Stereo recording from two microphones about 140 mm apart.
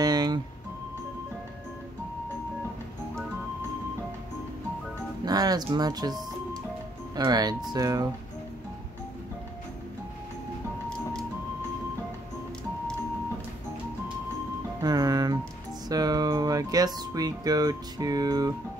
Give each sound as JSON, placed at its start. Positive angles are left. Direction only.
{"t": 0.0, "sound": "music", "side_deg": -30}
{"t": 5.2, "sound": "speech", "side_deg": -30}
{"t": 7.2, "sound": "speech", "side_deg": -30}
{"t": 14.8, "sound": "music", "side_deg": -25}
{"t": 15.9, "sound": "speech", "side_deg": -25}